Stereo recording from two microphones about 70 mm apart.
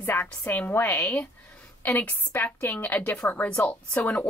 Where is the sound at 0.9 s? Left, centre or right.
Left; by 4.2 s centre.